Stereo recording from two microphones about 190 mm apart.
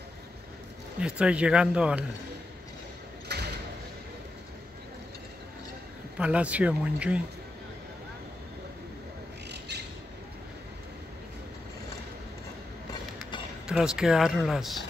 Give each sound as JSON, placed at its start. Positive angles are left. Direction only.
{"t": 1.0, "sound": "speech", "side_deg": -5}
{"t": 3.3, "sound": "a sound", "side_deg": -60}
{"t": 6.1, "sound": "speech", "side_deg": -5}
{"t": 9.5, "sound": "bird", "side_deg": -60}
{"t": 13.7, "sound": "speech", "side_deg": -5}